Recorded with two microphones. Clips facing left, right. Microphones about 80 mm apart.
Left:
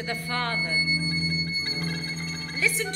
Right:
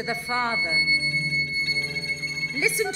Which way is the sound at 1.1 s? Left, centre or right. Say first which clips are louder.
Right 1 dB; left.